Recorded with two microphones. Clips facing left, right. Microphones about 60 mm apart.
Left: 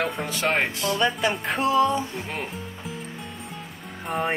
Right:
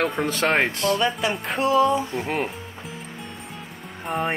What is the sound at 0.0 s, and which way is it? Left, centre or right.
Speech, centre.